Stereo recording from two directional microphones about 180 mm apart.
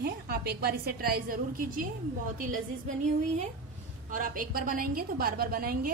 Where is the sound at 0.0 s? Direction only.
60° right (ahead or behind).